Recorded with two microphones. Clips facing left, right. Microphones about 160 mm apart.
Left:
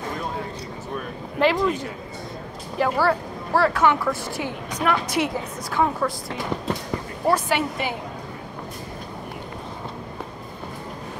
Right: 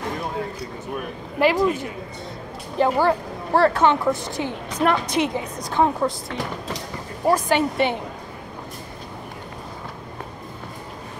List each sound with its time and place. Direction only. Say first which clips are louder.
1.4 s a woman's voice: right 2 dB; 15° right (ahead or behind)
7.2 s speech: right 2 dB; 15° right (ahead or behind)